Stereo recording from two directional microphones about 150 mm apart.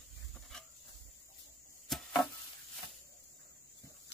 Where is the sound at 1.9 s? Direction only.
Centre (ahead or behind).